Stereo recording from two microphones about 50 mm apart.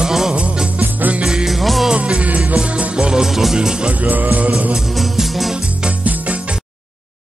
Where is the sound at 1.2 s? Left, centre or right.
Centre.